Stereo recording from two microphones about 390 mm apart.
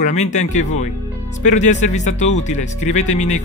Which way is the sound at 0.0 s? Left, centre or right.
Centre.